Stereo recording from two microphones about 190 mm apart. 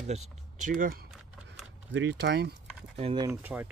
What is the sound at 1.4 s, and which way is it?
Speech, 65° right (ahead or behind).